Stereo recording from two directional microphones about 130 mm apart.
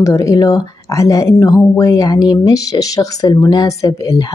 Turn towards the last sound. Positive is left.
turn(degrees=25)  # may be behind; listen again after turning